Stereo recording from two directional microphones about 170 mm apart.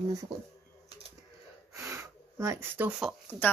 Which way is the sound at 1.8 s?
15° right (ahead or behind).